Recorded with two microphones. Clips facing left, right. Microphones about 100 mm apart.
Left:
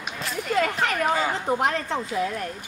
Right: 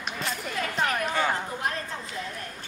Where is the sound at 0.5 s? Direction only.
80° left.